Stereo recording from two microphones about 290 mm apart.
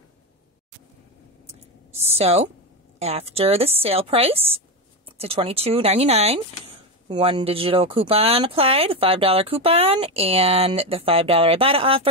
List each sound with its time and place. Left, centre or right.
2.0 s speech: right